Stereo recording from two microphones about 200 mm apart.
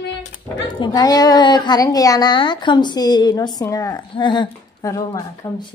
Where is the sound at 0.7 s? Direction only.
20° left (ahead or behind).